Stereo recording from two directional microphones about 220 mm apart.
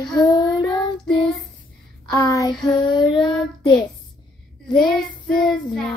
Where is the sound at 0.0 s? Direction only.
15° left (ahead or behind).